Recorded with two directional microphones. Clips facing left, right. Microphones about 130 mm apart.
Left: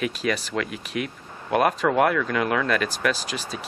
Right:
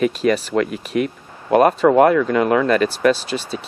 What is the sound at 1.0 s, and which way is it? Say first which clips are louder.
Speech: right 9 dB; 40° right (ahead or behind).